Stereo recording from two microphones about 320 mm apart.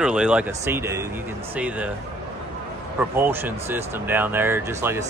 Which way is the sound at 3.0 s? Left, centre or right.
Centre.